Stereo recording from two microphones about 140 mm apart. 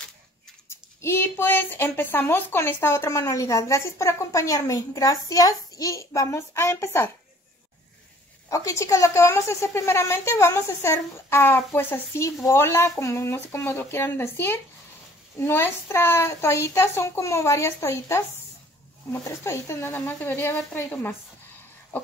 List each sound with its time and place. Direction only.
0.7 s speech: 15° left (ahead or behind)
8.5 s a woman's voice: 20° left (ahead or behind)